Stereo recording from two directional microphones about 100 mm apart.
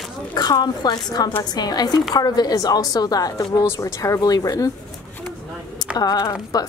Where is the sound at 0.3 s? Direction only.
45° left (ahead or behind).